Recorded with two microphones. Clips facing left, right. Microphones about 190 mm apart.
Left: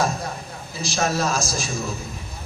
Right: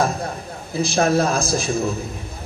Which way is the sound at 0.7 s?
55° right (ahead or behind).